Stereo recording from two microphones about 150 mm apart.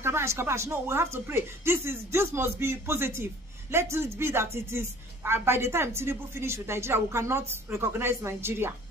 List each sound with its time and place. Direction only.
0.0 s speech: 15° right (ahead or behind)